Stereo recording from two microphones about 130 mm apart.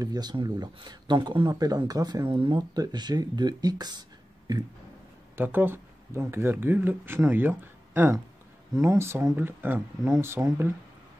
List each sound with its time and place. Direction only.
0.0 s speech: 30° right (ahead or behind)
4.5 s a sound: 30° right (ahead or behind)
5.4 s speech: 15° right (ahead or behind)